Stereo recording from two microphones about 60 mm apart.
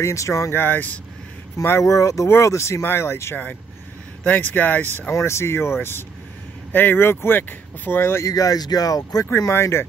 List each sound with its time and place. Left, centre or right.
0.0 s speech: left
0.5 s speech: left
1.8 s speech: left
2.2 s speech: left
2.8 s speech: left
4.2 s speech: left
5.1 s speech: left
8.3 s speech: left
9.5 s speech: left